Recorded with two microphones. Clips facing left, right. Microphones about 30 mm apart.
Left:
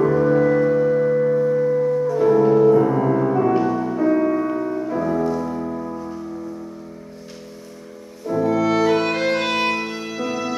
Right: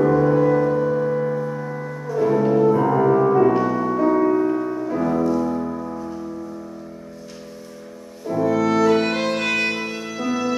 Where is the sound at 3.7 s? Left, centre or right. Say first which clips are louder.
Right 1 dB; centre.